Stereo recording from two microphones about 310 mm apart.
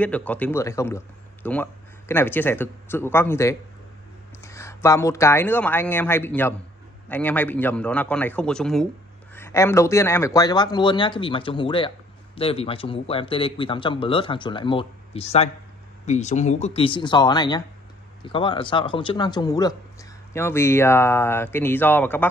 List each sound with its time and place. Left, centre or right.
0.0 s a man's voice: centre